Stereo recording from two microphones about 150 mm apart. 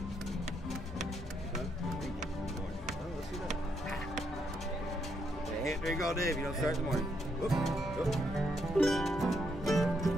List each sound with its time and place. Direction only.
5.9 s speech: centre (ahead or behind)
6.3 s music: centre (ahead or behind)